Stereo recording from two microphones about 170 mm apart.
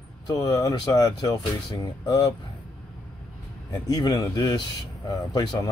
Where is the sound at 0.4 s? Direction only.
25° left (ahead or behind).